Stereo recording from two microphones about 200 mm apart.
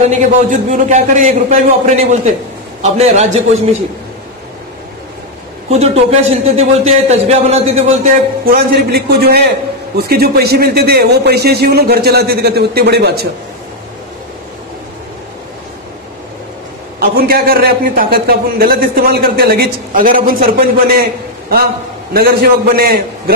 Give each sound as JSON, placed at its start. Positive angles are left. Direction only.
{"t": 0.0, "sound": "a man's voice", "side_deg": -40}
{"t": 5.7, "sound": "a man's voice", "side_deg": -30}
{"t": 8.5, "sound": "a man's voice", "side_deg": -50}
{"t": 17.0, "sound": "a man's voice", "side_deg": -50}
{"t": 22.1, "sound": "a man's voice", "side_deg": -50}